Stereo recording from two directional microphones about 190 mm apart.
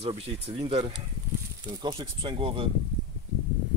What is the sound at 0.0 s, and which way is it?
Speech, 30° right (ahead or behind).